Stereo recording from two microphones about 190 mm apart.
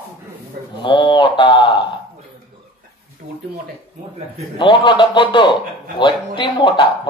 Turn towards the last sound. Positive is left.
turn(degrees=25)  # may be behind; listen again after turning